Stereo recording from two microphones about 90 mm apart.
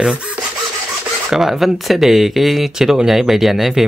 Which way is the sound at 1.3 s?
5° right (ahead or behind).